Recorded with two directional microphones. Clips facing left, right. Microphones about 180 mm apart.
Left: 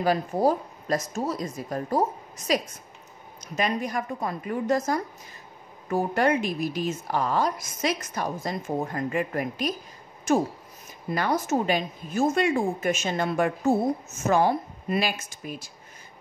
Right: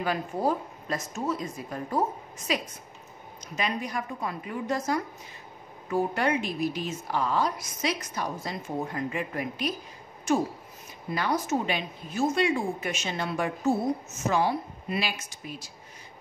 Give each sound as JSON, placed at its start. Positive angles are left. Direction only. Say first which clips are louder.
{"t": 0.0, "sound": "a woman's voice", "louder": "left 5 dB", "side_deg": 40}
{"t": 11.1, "sound": "a woman's voice", "louder": "left 2 dB", "side_deg": 45}